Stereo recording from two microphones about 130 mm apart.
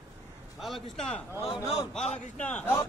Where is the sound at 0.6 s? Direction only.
Centre (ahead or behind).